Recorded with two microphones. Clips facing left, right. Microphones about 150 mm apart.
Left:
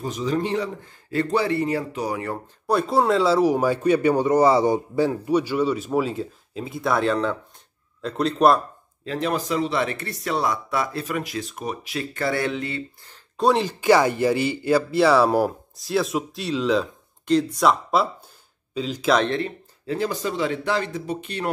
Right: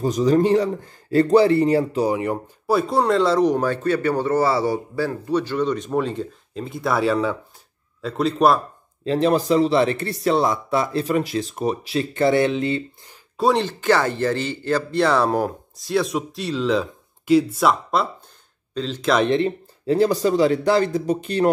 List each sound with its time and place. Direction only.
0.0 s speech: 40° right (ahead or behind); by 2.3 s 20° right (ahead or behind)
2.6 s speech: centre (ahead or behind)
9.0 s speech: 30° right (ahead or behind)
13.4 s speech: centre (ahead or behind)
13.7 s speech: 10° left (ahead or behind)
19.2 s speech: 20° right (ahead or behind)
19.9 s speech: 35° right (ahead or behind)